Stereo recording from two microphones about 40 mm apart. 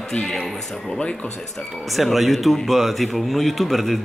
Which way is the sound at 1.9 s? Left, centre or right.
Centre.